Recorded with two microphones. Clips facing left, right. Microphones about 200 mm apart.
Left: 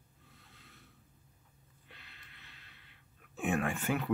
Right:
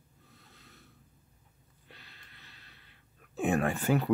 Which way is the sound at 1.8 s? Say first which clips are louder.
Right 3 dB; 35° right (ahead or behind).